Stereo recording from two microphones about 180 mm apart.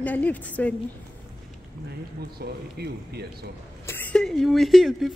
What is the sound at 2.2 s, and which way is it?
Speech, 65° right (ahead or behind).